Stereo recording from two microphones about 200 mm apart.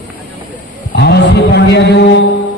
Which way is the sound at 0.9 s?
55° left (ahead or behind).